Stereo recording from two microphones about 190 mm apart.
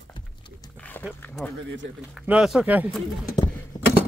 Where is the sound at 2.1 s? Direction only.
5° right (ahead or behind).